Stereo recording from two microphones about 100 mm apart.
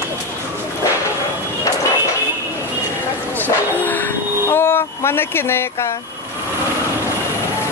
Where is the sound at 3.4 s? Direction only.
20° left (ahead or behind).